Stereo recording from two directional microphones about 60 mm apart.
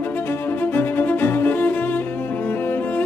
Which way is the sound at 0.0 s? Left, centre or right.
Left.